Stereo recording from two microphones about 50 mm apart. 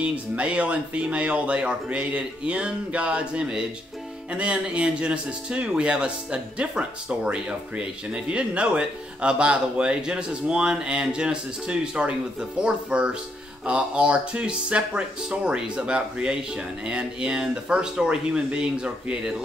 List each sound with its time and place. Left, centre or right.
0.0 s speech: right